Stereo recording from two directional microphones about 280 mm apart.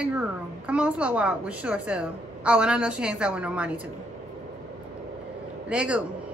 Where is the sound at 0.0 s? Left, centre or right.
Centre.